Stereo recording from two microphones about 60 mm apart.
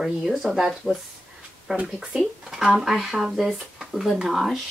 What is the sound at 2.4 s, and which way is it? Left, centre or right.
Speech, centre.